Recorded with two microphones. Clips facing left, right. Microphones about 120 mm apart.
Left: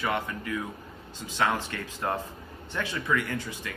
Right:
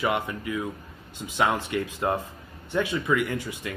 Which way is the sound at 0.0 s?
20° right (ahead or behind).